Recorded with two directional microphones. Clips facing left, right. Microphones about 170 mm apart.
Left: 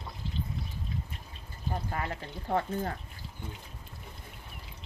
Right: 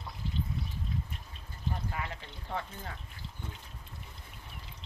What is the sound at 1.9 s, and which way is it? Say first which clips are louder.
Speech: left 5 dB; 45° left (ahead or behind).